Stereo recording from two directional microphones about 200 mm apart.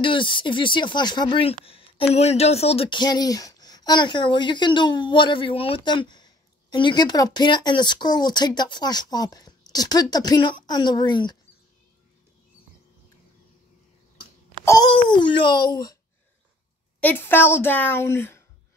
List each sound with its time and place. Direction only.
0.0 s speech: 25° left (ahead or behind)
14.6 s wail: 15° left (ahead or behind)
15.0 s speech: 25° left (ahead or behind)
17.0 s a woman's voice: 10° left (ahead or behind)